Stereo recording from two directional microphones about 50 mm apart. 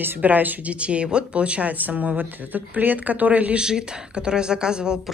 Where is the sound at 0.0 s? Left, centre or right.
Right.